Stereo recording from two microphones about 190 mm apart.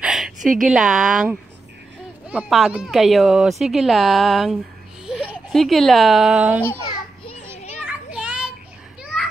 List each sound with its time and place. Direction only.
0.0 s a sound: centre (ahead or behind)
0.6 s speech: 5° right (ahead or behind)
7.5 s children playing: 35° left (ahead or behind)
7.8 s children playing: 5° right (ahead or behind)